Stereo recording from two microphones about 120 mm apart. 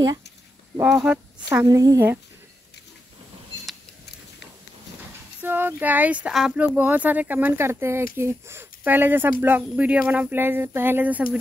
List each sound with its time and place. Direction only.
0.8 s speech: 10° right (ahead or behind)
1.7 s speech: 30° right (ahead or behind)
5.4 s speech: 15° right (ahead or behind)